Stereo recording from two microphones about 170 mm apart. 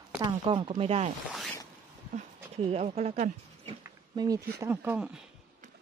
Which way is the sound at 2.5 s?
40° right (ahead or behind).